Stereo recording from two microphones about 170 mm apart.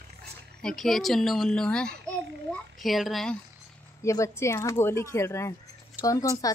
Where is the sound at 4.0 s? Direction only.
15° left (ahead or behind).